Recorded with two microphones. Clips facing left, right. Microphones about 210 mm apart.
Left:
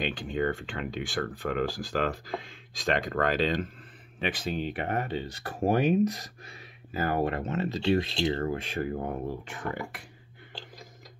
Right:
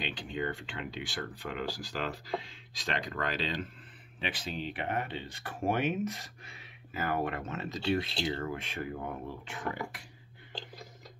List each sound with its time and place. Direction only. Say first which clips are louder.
0.0 s speech: left 6 dB; 50° left (ahead or behind)